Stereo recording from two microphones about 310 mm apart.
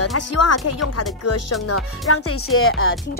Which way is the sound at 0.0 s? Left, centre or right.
Left.